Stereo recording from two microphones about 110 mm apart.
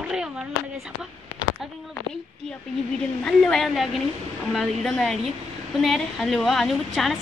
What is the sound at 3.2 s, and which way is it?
Speech, 5° left (ahead or behind).